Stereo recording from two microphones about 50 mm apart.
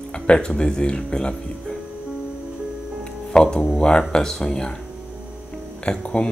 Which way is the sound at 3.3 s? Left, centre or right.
Centre.